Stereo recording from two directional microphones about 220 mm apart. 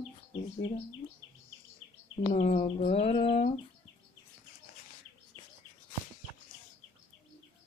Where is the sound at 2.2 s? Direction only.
25° left (ahead or behind).